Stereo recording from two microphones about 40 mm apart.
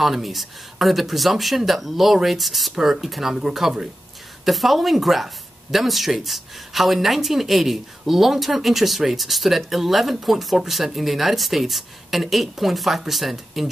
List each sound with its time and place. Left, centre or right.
0.0 s speech: centre